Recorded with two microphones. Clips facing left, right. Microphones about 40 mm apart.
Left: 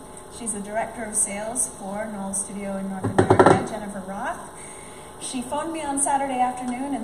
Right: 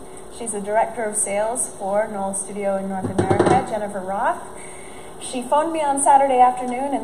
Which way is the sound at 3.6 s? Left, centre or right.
Centre.